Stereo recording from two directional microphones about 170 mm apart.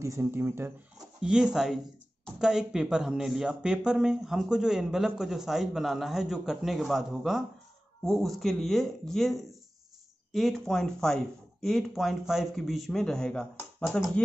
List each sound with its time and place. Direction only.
0.0 s speech: 15° right (ahead or behind); by 14.2 s 5° left (ahead or behind)